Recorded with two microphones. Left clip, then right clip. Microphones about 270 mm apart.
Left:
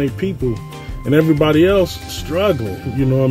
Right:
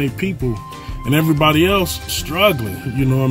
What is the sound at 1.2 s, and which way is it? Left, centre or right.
Speech, centre.